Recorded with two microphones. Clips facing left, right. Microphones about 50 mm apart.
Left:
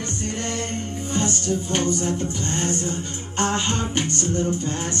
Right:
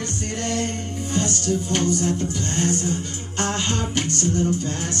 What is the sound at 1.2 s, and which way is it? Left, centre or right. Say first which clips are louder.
Music: right 1 dB; left.